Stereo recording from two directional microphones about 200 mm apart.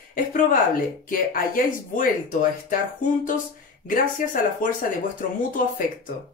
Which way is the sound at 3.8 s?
40° left (ahead or behind).